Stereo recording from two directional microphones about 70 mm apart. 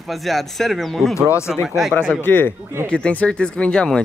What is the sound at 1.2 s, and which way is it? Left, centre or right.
Speech, left.